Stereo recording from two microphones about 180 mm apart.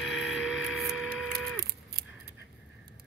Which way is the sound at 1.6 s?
65° right (ahead or behind).